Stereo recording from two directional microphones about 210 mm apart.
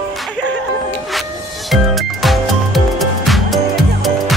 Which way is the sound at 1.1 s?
Centre (ahead or behind).